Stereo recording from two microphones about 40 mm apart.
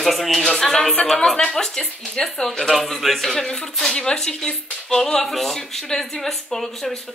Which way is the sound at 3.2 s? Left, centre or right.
Centre.